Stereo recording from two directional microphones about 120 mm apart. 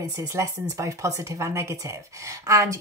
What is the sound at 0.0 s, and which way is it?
Speech, 25° right (ahead or behind).